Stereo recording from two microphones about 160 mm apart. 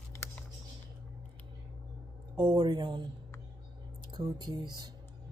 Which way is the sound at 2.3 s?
30° right (ahead or behind).